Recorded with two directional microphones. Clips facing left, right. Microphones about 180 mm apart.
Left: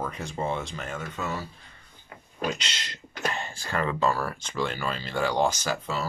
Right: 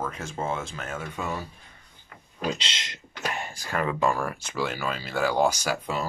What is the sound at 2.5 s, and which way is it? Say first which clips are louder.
Speech: right 1 dB; 25° right (ahead or behind).